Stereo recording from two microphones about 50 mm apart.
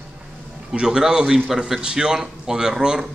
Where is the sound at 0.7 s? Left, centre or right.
Centre.